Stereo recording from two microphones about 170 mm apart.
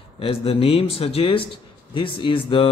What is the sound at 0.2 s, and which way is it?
Speech, 35° left (ahead or behind).